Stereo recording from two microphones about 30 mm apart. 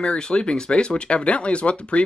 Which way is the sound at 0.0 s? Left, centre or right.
Left.